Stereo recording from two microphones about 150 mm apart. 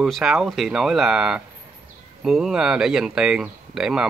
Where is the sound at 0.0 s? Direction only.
5° right (ahead or behind).